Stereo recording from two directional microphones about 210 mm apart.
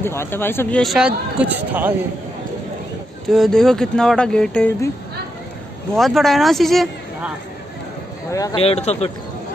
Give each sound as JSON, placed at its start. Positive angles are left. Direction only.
{"t": 0.0, "sound": "speech", "side_deg": 10}
{"t": 3.3, "sound": "speech", "side_deg": 0}
{"t": 5.9, "sound": "speech", "side_deg": 0}
{"t": 8.3, "sound": "speech", "side_deg": 15}
{"t": 8.5, "sound": "speech", "side_deg": 30}